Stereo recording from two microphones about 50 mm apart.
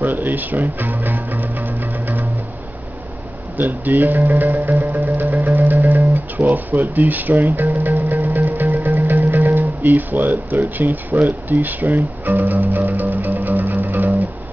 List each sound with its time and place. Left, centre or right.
0.0 s music: right
3.5 s speech: right
4.8 s music: right
9.2 s speech: right